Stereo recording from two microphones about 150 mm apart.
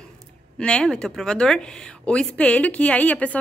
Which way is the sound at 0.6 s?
5° left (ahead or behind).